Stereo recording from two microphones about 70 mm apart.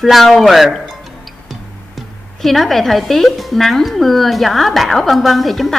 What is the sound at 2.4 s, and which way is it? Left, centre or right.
Speech, centre.